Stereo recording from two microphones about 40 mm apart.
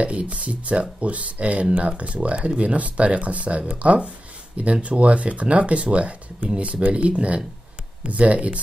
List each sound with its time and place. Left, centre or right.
0.0 s speech: right